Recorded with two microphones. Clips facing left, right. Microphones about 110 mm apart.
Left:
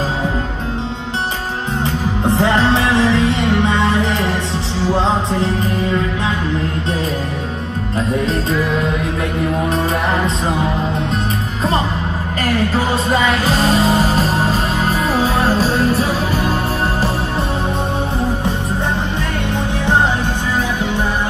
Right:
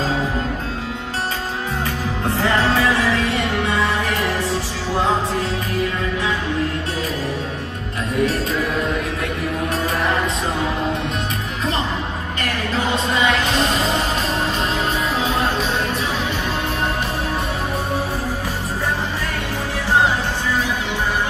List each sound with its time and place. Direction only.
2.2 s music: 20° left (ahead or behind)
3.6 s music: 30° left (ahead or behind)
13.1 s music: 40° left (ahead or behind)